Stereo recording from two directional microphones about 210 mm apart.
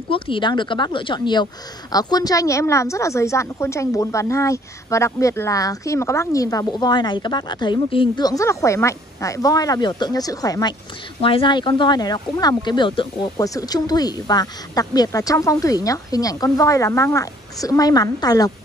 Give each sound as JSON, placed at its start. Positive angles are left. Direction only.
{"t": 0.1, "sound": "speech", "side_deg": 25}